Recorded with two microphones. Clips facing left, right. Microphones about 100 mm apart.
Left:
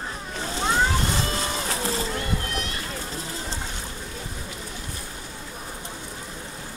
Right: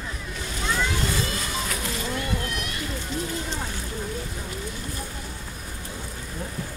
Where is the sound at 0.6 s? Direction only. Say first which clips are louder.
Left 4 dB; 40° left (ahead or behind).